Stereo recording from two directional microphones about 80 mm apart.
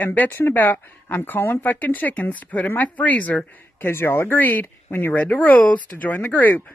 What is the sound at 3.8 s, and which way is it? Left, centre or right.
Speech, left.